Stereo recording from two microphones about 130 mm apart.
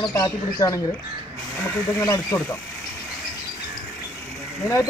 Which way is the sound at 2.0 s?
25° left (ahead or behind).